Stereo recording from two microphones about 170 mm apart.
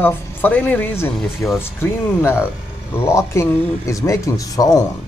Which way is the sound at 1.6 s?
10° left (ahead or behind).